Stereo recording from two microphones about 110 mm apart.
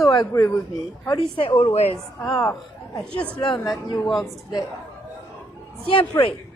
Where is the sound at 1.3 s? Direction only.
45° left (ahead or behind).